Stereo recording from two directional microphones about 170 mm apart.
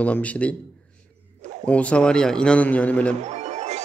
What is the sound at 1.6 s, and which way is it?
A man's voice, 10° left (ahead or behind).